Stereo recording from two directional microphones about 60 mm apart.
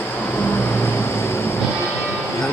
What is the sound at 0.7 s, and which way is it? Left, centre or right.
Vehicle, left.